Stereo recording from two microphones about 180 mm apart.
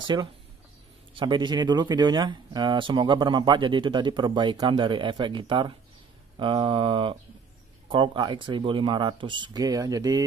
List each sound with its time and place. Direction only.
0.0 s speech: 25° right (ahead or behind)